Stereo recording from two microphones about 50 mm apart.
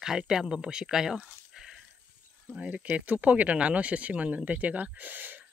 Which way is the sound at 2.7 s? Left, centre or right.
Right.